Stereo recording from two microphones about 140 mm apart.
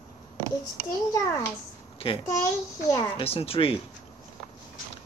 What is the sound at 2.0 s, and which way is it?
Speech, 40° left (ahead or behind).